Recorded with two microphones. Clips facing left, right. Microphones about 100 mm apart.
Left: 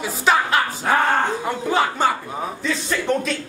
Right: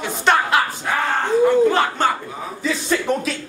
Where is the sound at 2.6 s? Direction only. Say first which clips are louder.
Right 3 dB; 5° right (ahead or behind).